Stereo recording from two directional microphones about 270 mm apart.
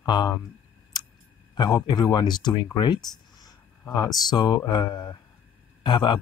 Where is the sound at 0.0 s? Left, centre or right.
Centre.